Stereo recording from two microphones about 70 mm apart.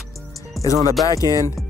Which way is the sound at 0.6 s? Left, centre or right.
Left.